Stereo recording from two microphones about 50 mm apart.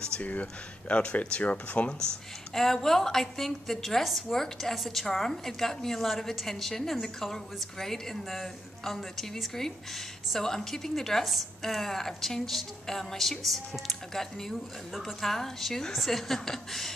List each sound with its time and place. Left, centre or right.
0.2 s speech: left
2.5 s a woman's voice: centre